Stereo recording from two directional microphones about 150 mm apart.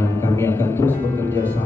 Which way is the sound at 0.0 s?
15° left (ahead or behind).